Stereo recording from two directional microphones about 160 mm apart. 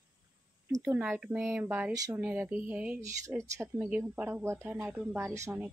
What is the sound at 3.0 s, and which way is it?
Speech, 20° right (ahead or behind).